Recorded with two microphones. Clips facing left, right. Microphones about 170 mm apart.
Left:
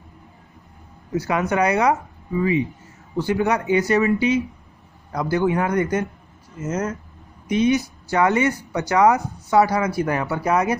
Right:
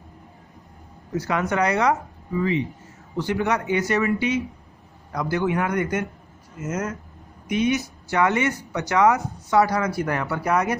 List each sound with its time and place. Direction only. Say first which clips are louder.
1.1 s speech: left 2 dB; 25° left (ahead or behind)
3.2 s speech: left 3 dB; 30° left (ahead or behind)